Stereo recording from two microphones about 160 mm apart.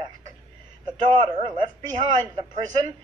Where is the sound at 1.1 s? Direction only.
30° right (ahead or behind).